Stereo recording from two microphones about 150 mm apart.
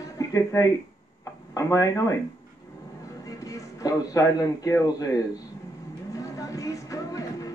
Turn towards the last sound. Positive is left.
turn(degrees=25)  # may be behind; listen again after turning